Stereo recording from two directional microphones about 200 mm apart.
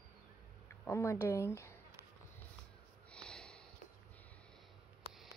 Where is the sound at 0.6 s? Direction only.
15° left (ahead or behind).